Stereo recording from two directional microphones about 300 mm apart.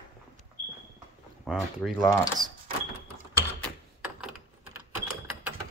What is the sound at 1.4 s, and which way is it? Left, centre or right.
Speech, centre.